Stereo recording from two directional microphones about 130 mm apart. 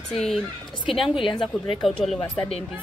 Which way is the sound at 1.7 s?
Centre (ahead or behind).